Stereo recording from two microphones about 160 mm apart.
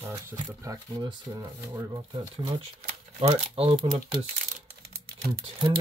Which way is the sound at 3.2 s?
40° right (ahead or behind).